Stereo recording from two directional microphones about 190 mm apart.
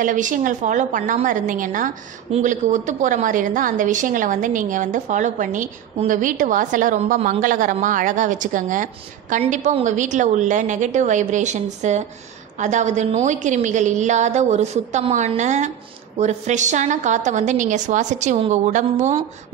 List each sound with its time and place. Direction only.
0.0 s a woman's voice: 45° right (ahead or behind)